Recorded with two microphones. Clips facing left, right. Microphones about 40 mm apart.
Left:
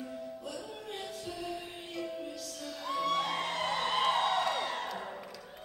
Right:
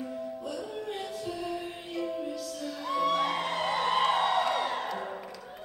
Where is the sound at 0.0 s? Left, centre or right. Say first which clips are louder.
Right 5 dB; centre.